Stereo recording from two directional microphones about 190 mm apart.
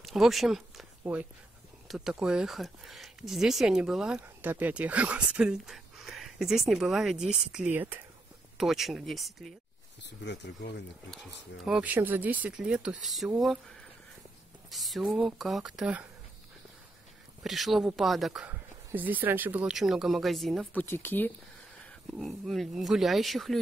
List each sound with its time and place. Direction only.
0.0 s speech: centre (ahead or behind)
10.2 s speech: 65° left (ahead or behind)
11.6 s speech: 5° right (ahead or behind)
17.4 s speech: centre (ahead or behind)
20.8 s speech: 10° left (ahead or behind)
22.2 s speech: centre (ahead or behind)